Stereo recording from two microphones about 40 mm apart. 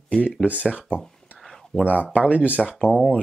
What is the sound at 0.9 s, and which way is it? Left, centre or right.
Speech, left.